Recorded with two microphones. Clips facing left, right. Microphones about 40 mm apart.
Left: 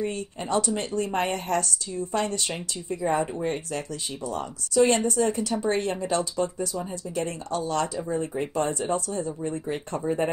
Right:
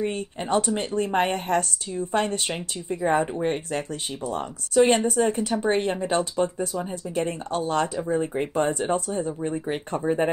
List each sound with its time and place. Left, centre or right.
0.0 s speech: right